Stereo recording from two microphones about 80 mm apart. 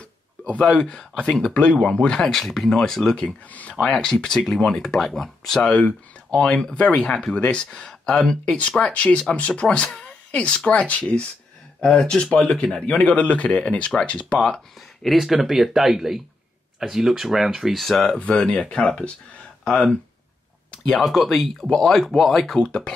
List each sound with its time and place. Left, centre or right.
0.7 s speech: centre
3.4 s speech: centre
11.8 s speech: centre
15.0 s speech: centre
20.8 s speech: centre